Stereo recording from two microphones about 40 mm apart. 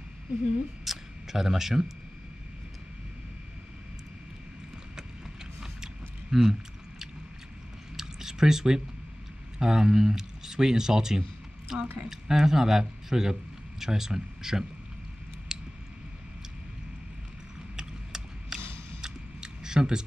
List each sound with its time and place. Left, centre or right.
0.8 s speech: centre
6.3 s speech: centre
7.9 s chewing: centre
9.6 s speech: centre
15.5 s a sound: centre
17.7 s a sound: centre